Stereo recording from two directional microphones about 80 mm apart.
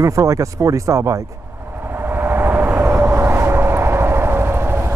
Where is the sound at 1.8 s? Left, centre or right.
Right.